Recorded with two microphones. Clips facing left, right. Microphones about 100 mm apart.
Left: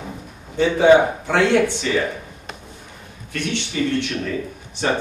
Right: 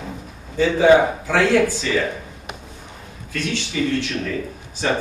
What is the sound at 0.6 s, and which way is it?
Speech, 25° left (ahead or behind).